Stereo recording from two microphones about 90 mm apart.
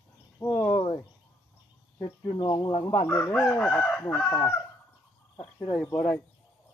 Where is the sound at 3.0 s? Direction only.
15° left (ahead or behind).